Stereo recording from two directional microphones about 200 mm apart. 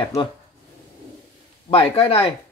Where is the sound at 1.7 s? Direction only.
30° left (ahead or behind).